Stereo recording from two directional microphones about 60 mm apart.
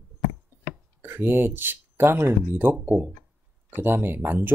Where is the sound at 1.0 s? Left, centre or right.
Right.